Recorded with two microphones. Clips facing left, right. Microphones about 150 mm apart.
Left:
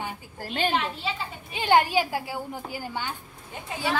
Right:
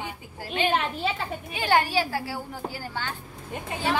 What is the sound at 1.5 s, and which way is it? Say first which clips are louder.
A woman's voice: left 2 dB; 20° left (ahead or behind).